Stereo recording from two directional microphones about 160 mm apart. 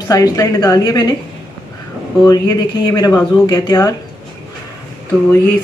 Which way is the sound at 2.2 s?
25° left (ahead or behind).